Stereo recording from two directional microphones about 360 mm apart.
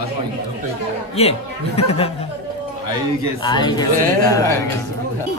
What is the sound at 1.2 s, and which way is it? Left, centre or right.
Speech, centre.